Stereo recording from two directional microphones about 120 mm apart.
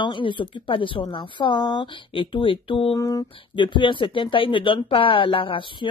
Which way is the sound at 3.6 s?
40° left (ahead or behind).